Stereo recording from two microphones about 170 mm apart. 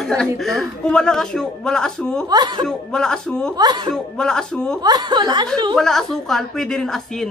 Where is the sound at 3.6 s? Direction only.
25° right (ahead or behind).